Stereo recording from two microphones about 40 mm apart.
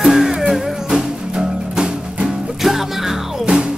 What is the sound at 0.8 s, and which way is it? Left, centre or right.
Music, centre.